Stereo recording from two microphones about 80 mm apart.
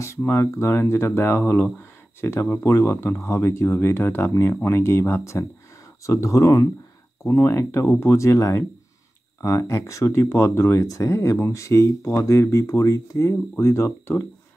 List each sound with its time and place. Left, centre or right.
0.0 s speech: left